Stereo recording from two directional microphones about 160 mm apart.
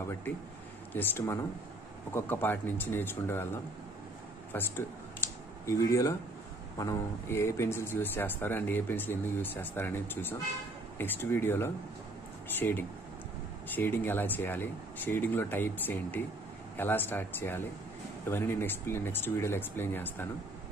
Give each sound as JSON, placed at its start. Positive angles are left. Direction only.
{"t": 0.9, "sound": "speech", "side_deg": 15}
{"t": 4.5, "sound": "a sound", "side_deg": 15}
{"t": 6.8, "sound": "speech", "side_deg": 20}